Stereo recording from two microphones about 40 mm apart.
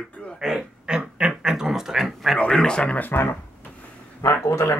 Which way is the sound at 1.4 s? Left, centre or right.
Centre.